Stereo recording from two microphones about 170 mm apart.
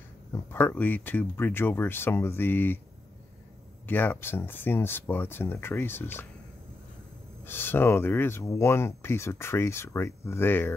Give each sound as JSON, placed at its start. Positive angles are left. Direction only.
{"t": 0.3, "sound": "speech", "side_deg": 15}
{"t": 3.8, "sound": "speech", "side_deg": 10}
{"t": 7.4, "sound": "speech", "side_deg": 15}